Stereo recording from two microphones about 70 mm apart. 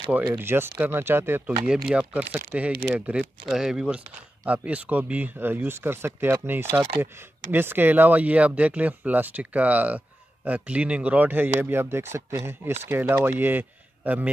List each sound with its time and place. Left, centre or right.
0.3 s speech: right
1.7 s speech: centre
4.5 s a man's voice: centre